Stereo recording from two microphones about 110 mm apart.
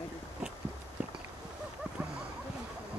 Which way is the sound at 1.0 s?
10° right (ahead or behind).